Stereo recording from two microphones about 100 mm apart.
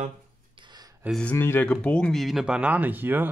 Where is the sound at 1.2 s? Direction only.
20° left (ahead or behind).